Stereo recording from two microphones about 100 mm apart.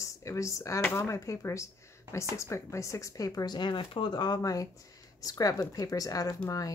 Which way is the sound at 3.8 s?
60° left (ahead or behind).